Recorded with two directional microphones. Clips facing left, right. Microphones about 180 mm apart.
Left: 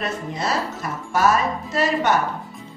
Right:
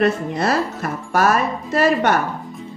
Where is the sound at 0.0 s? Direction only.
60° right (ahead or behind).